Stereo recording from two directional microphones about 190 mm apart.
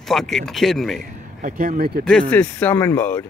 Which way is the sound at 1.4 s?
50° right (ahead or behind).